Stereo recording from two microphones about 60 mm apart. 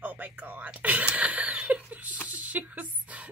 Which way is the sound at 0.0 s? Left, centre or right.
Right.